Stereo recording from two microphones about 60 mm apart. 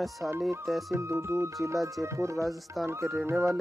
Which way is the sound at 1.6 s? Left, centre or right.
Right.